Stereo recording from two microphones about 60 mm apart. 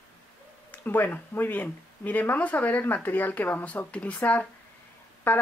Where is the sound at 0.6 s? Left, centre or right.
Left.